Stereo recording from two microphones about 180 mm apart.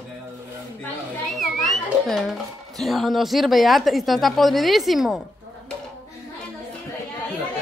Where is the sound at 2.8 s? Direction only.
Centre (ahead or behind).